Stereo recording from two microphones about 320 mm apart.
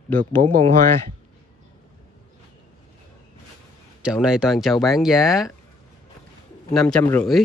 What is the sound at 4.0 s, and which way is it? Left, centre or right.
Speech, centre.